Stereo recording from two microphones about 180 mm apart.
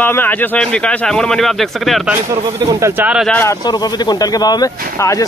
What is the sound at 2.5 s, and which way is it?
Speech, 20° right (ahead or behind).